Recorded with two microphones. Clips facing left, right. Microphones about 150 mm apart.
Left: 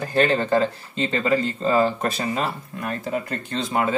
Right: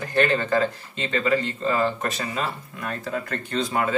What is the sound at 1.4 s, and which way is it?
Speech, 35° left (ahead or behind).